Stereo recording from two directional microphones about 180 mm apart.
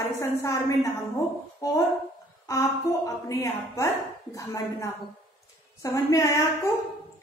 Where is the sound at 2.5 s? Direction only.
15° left (ahead or behind).